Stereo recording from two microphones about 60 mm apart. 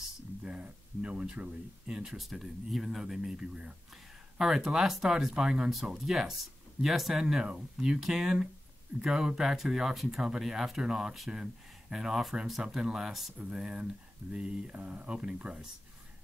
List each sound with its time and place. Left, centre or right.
0.4 s a sound: right
1.2 s speech: centre
2.1 s speech: centre